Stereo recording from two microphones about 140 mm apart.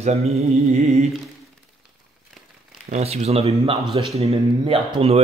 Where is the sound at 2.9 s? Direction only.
50° right (ahead or behind).